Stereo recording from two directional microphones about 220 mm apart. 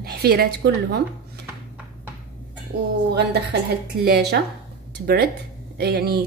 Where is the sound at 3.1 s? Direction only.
50° right (ahead or behind).